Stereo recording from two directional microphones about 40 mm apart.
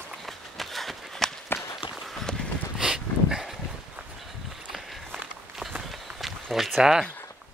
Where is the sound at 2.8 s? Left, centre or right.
Centre.